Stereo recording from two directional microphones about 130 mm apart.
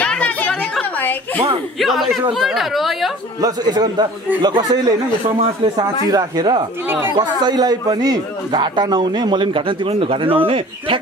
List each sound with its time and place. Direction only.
0.0 s a sound: 10° left (ahead or behind)
1.8 s speech: centre (ahead or behind)
3.3 s a man's voice: 30° right (ahead or behind)
6.0 s a man's voice: 30° right (ahead or behind)